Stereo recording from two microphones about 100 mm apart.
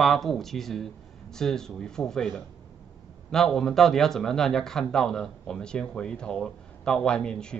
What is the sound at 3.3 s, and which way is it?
Speech, 5° left (ahead or behind).